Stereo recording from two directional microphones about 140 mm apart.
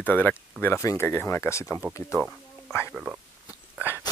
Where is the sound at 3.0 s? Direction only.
10° right (ahead or behind).